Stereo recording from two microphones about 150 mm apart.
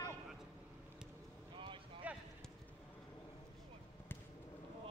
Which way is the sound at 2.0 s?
10° right (ahead or behind).